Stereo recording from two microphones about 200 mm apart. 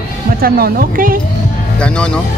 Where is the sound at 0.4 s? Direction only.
50° right (ahead or behind).